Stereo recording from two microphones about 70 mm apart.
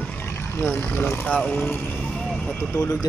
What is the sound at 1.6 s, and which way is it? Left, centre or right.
Speech, left.